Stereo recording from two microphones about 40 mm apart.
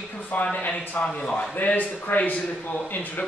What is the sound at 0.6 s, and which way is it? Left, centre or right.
A man's voice, left.